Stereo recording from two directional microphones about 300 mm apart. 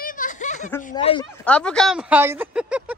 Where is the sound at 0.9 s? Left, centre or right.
Centre.